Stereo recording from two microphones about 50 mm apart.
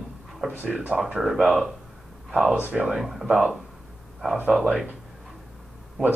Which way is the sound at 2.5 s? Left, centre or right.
Right.